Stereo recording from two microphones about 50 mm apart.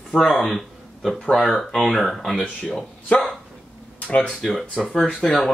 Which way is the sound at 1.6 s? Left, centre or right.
Centre.